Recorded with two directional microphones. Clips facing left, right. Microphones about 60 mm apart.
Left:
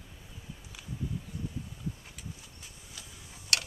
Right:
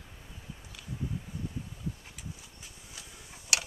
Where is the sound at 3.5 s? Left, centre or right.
Centre.